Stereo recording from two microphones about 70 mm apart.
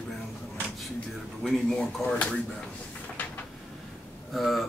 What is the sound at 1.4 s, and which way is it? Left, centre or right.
Speech, centre.